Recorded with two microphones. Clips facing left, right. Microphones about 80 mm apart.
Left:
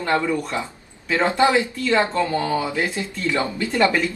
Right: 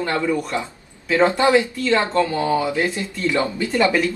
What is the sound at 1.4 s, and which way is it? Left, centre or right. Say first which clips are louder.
Speech: right 1 dB; centre.